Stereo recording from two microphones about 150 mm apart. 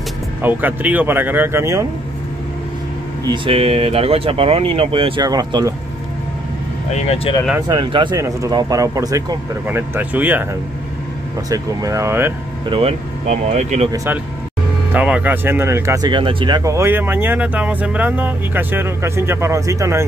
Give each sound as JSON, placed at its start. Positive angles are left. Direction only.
{"t": 0.4, "sound": "speech", "side_deg": -10}
{"t": 3.3, "sound": "speech", "side_deg": -40}
{"t": 6.9, "sound": "speech", "side_deg": 45}
{"t": 7.6, "sound": "speech", "side_deg": -30}
{"t": 9.7, "sound": "speech", "side_deg": -15}
{"t": 11.5, "sound": "speech", "side_deg": -20}
{"t": 12.6, "sound": "speech", "side_deg": -35}
{"t": 13.3, "sound": "speech", "side_deg": -50}
{"t": 13.9, "sound": "speech", "side_deg": -15}